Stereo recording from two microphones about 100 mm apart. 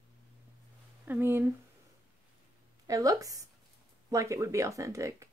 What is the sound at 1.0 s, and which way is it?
Speech, 20° right (ahead or behind).